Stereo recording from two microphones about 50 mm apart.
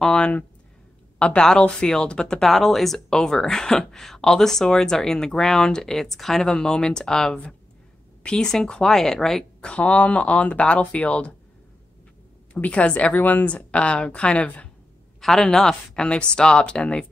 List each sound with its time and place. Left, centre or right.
0.0 s speech: centre
2.4 s speech: centre
3.1 s speech: centre
9.7 s a woman's voice: left
12.5 s a woman's voice: left
15.1 s a sound: centre
15.4 s a woman's voice: centre